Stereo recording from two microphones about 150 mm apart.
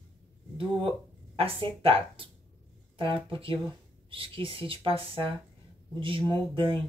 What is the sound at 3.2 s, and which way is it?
Speech, 35° right (ahead or behind).